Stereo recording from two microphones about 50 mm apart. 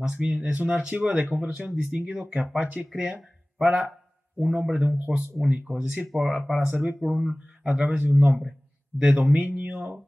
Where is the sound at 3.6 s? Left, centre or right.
Centre.